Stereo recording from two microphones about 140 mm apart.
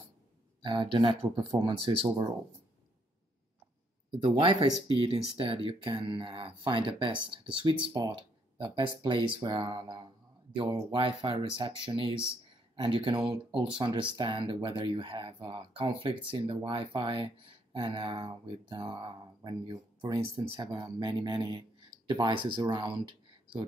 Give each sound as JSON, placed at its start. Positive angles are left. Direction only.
{"t": 0.6, "sound": "speech", "side_deg": -35}
{"t": 4.2, "sound": "speech", "side_deg": -50}
{"t": 4.8, "sound": "speech", "side_deg": -40}